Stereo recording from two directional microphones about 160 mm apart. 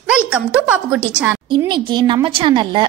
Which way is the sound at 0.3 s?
10° right (ahead or behind).